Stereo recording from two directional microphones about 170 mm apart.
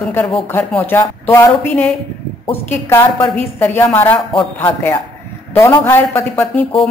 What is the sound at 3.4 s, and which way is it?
A woman's voice, 10° left (ahead or behind).